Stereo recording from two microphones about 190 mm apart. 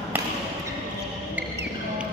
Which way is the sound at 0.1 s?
10° right (ahead or behind).